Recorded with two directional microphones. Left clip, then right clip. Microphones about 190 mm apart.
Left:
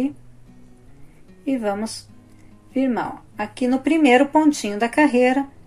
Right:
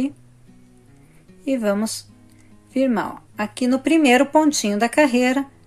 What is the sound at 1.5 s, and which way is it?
Speech, 30° right (ahead or behind).